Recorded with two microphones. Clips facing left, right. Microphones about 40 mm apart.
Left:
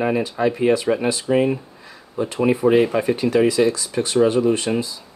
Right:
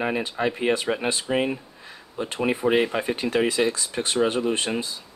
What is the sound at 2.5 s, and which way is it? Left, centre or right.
Speech, right.